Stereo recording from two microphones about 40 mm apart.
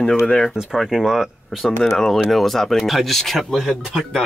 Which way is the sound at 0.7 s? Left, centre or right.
Centre.